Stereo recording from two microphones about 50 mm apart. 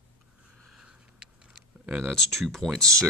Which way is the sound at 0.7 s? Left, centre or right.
Centre.